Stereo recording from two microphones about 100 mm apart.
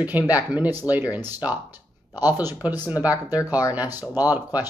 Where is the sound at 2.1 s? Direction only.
40° left (ahead or behind).